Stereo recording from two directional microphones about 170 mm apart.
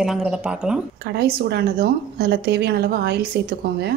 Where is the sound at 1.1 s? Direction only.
75° right (ahead or behind).